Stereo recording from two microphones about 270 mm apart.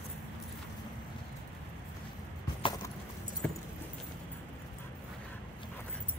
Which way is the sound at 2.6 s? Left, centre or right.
Centre.